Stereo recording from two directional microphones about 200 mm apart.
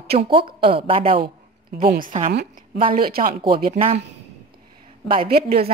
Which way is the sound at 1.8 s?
45° right (ahead or behind).